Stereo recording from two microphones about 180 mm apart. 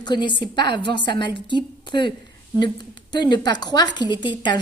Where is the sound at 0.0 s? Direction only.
25° left (ahead or behind).